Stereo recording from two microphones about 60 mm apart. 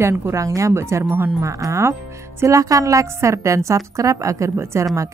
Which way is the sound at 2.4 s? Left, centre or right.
Right.